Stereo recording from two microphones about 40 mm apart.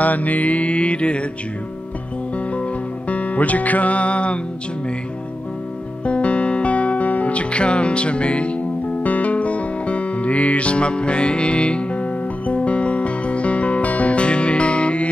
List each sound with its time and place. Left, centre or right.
0.0 s music: left
2.3 s music: left
6.0 s music: left